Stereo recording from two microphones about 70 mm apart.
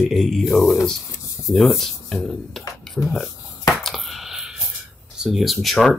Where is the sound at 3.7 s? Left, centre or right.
Centre.